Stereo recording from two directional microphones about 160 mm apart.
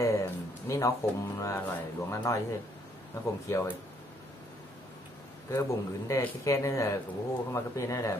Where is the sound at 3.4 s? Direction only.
15° left (ahead or behind).